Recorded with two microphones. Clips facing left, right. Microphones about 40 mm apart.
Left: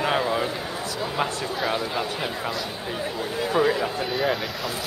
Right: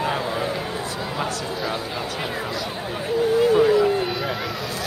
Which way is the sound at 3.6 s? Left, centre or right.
Centre.